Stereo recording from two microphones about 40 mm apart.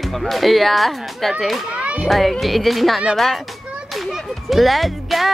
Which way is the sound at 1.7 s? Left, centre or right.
Right.